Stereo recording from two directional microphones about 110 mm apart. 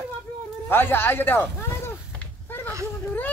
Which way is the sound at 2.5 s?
20° left (ahead or behind).